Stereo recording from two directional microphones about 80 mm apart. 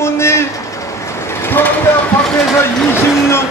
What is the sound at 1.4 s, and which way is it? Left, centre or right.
Train, left.